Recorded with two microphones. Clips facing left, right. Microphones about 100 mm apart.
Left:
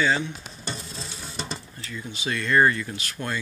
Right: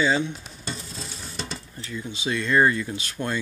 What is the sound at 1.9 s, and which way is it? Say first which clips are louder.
Speech: right 2 dB; 20° right (ahead or behind).